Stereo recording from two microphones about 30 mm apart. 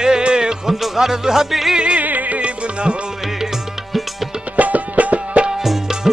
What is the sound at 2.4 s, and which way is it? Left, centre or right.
Music, right.